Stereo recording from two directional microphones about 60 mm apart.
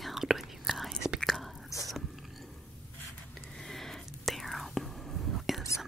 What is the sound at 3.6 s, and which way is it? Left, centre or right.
Whispering, centre.